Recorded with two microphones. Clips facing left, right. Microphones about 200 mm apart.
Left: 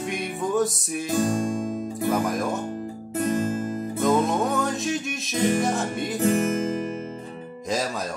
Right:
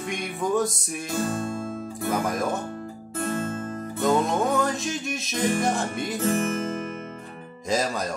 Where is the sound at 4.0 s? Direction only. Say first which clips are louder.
Left 1 dB; centre (ahead or behind).